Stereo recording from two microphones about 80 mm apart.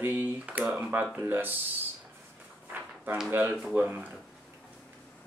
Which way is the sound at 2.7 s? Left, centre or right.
Right.